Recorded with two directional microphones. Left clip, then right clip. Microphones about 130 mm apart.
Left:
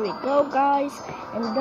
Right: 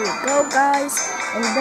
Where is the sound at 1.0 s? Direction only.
55° right (ahead or behind).